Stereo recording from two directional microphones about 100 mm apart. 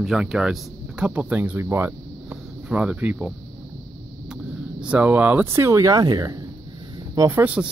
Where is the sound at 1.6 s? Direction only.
25° right (ahead or behind).